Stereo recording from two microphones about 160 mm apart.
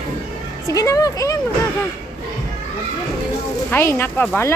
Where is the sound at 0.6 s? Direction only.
20° left (ahead or behind).